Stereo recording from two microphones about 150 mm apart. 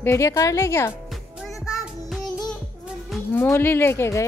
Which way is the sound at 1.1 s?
Centre (ahead or behind).